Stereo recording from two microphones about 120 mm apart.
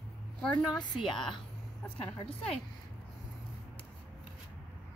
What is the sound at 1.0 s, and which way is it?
A woman's voice, 40° left (ahead or behind).